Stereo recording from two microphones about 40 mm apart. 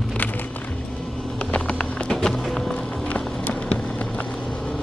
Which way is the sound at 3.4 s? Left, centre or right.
Left.